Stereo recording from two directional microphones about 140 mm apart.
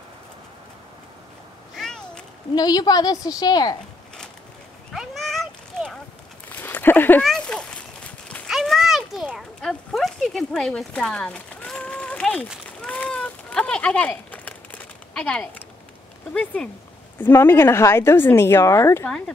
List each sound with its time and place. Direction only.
1.8 s cat: 5° left (ahead or behind)
2.5 s a woman's voice: 30° left (ahead or behind)
4.9 s a sound: centre (ahead or behind)
6.5 s a sound: 15° left (ahead or behind)
17.2 s speech: 15° left (ahead or behind)
19.0 s speech: 5° left (ahead or behind)